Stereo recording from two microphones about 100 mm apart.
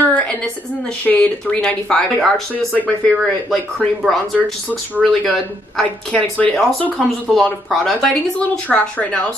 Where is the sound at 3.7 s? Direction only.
Centre (ahead or behind).